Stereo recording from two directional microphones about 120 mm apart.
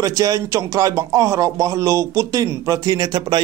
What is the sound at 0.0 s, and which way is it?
Speech, 30° right (ahead or behind).